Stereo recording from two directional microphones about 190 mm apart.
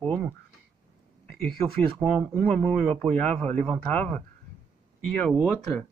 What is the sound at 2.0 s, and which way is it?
Speech, 10° right (ahead or behind).